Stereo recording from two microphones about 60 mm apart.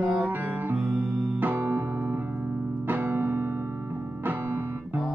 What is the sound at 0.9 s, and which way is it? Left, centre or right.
Music, centre.